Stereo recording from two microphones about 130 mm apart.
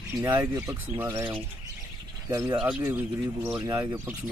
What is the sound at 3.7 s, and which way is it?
Speech, 25° right (ahead or behind).